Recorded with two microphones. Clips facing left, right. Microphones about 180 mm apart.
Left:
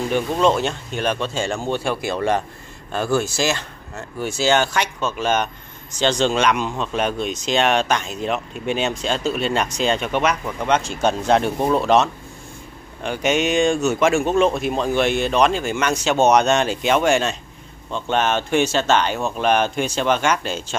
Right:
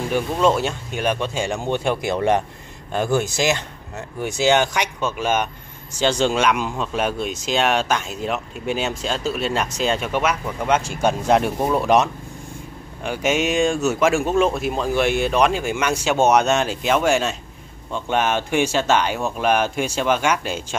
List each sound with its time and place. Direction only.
0.1 s speech: 5° right (ahead or behind)